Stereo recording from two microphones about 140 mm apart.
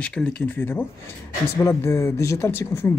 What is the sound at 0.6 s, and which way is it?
Speech, 15° left (ahead or behind).